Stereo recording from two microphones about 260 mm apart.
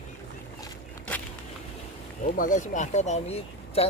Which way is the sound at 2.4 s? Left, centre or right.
Left.